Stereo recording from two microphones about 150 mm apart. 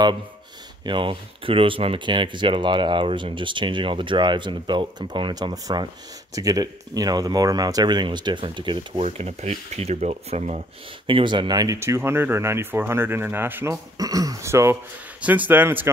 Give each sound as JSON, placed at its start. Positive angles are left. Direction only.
{"t": 0.8, "sound": "speech", "side_deg": -35}
{"t": 9.0, "sound": "speech", "side_deg": -45}
{"t": 11.1, "sound": "speech", "side_deg": -35}